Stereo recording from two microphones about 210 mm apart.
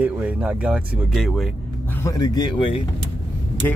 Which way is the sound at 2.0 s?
20° left (ahead or behind).